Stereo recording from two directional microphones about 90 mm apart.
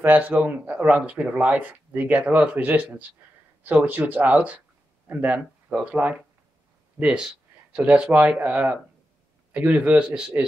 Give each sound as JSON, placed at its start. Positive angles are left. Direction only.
{"t": 0.0, "sound": "speech", "side_deg": -15}